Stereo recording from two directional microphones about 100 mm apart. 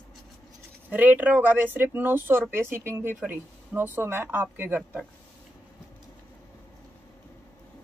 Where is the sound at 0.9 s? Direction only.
15° right (ahead or behind).